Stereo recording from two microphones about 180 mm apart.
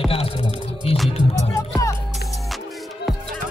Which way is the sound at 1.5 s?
15° left (ahead or behind).